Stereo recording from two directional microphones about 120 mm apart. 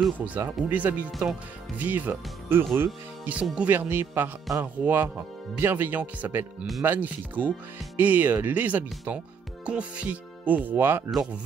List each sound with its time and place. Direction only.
0.2 s speech: 15° right (ahead or behind)